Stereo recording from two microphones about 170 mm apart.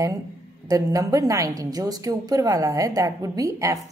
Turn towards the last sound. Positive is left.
turn(degrees=-20)  # may be behind; listen again after turning